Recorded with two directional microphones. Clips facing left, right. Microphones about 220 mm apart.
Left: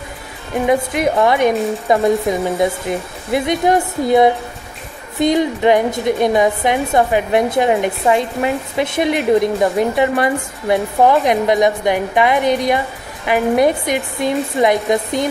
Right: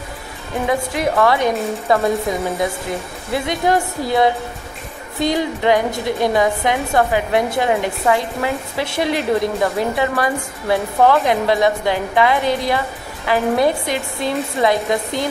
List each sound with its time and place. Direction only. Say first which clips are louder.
0.7 s a woman's voice: left 4 dB; 20° left (ahead or behind)
3.3 s a woman's voice: left 3 dB; 20° left (ahead or behind)